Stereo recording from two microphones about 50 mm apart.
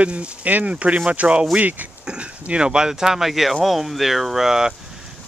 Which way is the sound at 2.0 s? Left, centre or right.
Right.